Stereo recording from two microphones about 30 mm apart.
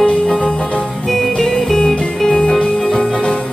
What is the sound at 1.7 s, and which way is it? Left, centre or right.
Music, centre.